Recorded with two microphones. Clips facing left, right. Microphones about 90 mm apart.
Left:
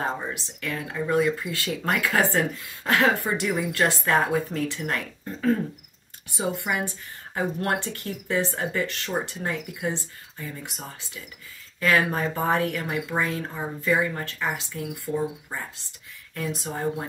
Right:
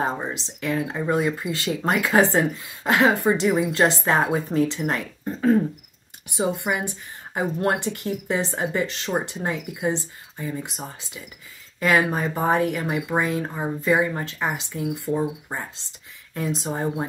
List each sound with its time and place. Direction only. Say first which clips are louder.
0.0 s speech: right 3 dB; 20° right (ahead or behind)